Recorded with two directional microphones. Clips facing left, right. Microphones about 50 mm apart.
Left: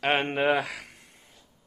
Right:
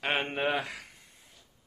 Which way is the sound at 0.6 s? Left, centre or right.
Left.